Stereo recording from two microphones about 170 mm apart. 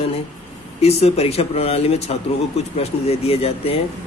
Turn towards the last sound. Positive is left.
turn(degrees=35)  # may be behind; listen again after turning